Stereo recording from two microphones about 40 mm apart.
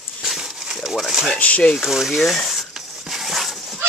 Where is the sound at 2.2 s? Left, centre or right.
Centre.